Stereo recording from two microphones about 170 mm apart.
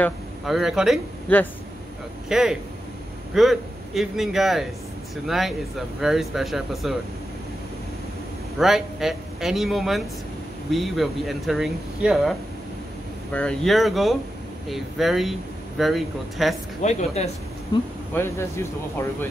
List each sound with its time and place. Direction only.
0.5 s speech: centre (ahead or behind)
1.3 s speech: 10° left (ahead or behind)
2.2 s speech: 5° right (ahead or behind)
8.5 s speech: centre (ahead or behind)
16.8 s speech: 40° left (ahead or behind)
18.1 s speech: 15° left (ahead or behind)